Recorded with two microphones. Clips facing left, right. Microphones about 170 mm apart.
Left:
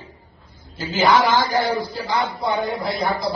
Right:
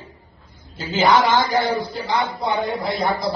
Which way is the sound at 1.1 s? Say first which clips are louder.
Right 1 dB; 20° right (ahead or behind).